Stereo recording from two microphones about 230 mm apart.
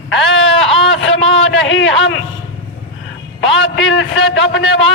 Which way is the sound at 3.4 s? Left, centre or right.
Left.